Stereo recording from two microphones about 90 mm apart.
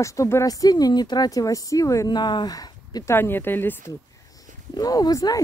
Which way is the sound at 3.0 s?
25° left (ahead or behind).